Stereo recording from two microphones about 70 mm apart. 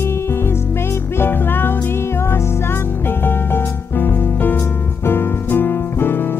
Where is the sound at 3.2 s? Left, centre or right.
Left.